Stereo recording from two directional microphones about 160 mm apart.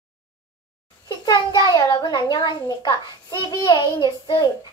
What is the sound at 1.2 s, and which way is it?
Child singing, 25° left (ahead or behind).